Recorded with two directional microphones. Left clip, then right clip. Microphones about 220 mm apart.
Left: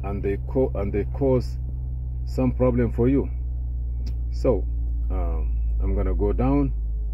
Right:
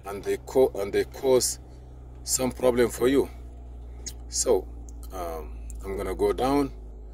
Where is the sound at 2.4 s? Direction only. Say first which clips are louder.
Right 1 dB; 45° right (ahead or behind).